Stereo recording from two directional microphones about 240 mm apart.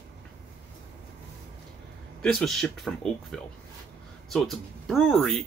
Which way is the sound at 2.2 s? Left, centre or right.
Centre.